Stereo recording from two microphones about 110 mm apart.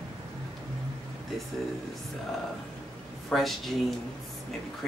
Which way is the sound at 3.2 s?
Centre (ahead or behind).